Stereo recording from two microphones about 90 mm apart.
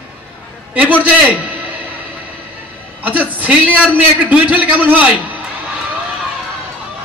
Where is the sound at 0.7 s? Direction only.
15° right (ahead or behind).